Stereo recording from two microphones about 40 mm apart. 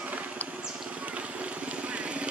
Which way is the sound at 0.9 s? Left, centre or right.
Right.